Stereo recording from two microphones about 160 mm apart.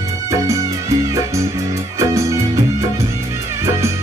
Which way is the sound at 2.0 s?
20° right (ahead or behind).